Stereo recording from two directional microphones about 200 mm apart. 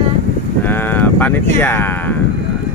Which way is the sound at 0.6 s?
10° left (ahead or behind).